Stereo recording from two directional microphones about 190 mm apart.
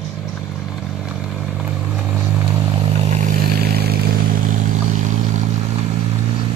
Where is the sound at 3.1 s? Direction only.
50° right (ahead or behind).